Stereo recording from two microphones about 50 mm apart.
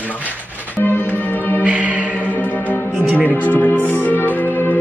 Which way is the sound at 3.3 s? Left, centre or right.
Left.